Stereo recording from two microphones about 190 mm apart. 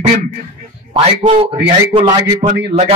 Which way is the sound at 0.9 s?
30° right (ahead or behind).